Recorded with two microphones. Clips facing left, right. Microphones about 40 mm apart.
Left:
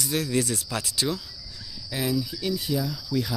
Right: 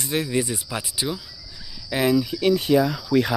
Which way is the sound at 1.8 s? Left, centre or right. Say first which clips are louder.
Right 7 dB; right.